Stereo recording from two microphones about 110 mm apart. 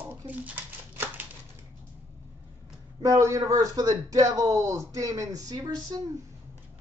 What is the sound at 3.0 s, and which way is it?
Speech, 30° right (ahead or behind).